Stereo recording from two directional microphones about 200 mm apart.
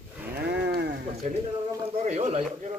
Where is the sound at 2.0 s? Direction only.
35° right (ahead or behind).